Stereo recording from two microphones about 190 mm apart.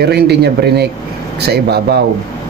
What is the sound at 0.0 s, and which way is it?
Speech, 60° right (ahead or behind).